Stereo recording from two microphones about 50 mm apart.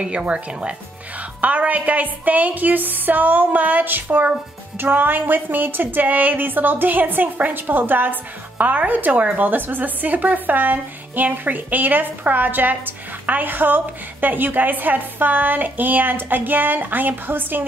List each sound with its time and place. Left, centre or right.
0.0 s speech: right